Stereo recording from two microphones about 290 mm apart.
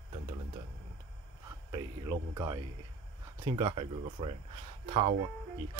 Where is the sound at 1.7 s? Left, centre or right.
Centre.